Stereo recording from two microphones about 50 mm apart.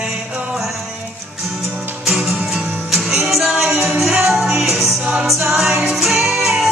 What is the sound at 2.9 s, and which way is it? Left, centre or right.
Music, centre.